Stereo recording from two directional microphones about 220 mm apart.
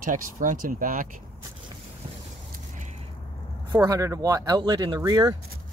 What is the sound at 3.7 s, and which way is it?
Speech, 15° right (ahead or behind).